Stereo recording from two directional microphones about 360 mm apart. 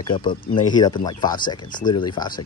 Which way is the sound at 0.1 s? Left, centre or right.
Centre.